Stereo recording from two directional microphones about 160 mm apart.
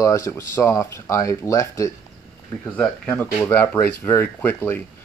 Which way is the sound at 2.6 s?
5° left (ahead or behind).